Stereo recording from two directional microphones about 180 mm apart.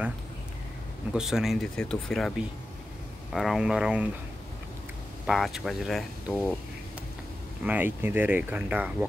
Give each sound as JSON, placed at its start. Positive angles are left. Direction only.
{"t": 1.1, "sound": "speech", "side_deg": -5}
{"t": 3.3, "sound": "speech", "side_deg": 0}
{"t": 5.2, "sound": "speech", "side_deg": 0}
{"t": 7.6, "sound": "speech", "side_deg": -10}